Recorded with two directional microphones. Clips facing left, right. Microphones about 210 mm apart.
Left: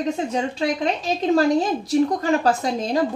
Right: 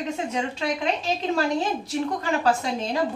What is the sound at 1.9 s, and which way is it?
Speech, 40° left (ahead or behind).